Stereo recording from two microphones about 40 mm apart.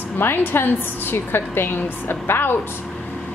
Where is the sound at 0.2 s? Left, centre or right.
Left.